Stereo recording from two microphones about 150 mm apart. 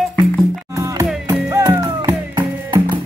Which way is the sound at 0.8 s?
20° right (ahead or behind).